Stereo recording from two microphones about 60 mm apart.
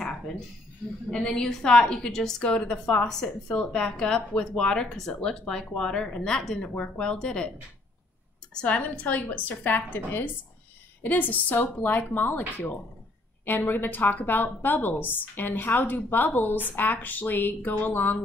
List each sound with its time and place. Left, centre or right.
1.1 s a woman's voice: centre
8.5 s a woman's voice: left